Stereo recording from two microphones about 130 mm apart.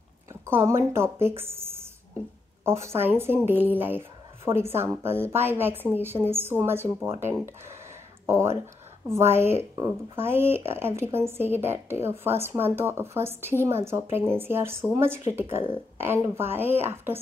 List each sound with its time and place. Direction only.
0.3 s a sound: 20° right (ahead or behind)
0.9 s speech: 20° right (ahead or behind)
8.3 s speech: 20° right (ahead or behind)